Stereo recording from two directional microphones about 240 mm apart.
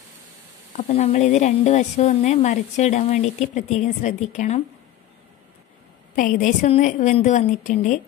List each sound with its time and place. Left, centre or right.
0.7 s speech: left
6.1 s a woman's voice: left